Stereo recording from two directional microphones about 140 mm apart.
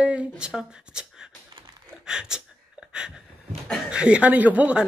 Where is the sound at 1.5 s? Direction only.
35° right (ahead or behind).